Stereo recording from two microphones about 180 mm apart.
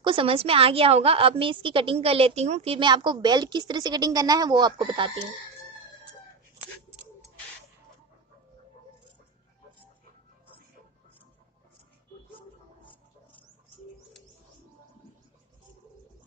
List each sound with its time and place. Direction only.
0.0 s a woman's voice: 30° right (ahead or behind)